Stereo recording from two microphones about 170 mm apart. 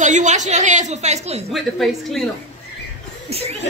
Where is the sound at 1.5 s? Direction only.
Centre (ahead or behind).